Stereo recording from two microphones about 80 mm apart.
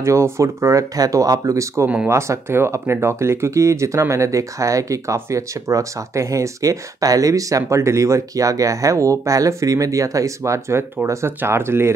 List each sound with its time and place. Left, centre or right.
0.0 s speech: right